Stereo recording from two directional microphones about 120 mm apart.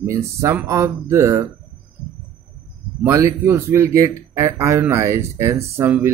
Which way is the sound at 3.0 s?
25° right (ahead or behind).